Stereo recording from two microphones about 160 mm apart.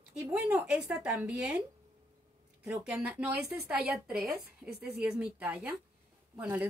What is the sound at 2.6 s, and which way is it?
Speech, 5° right (ahead or behind).